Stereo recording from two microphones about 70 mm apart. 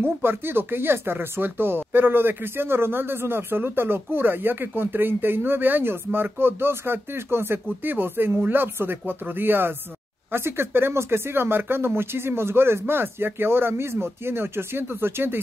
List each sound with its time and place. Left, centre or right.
0.0 s speech: right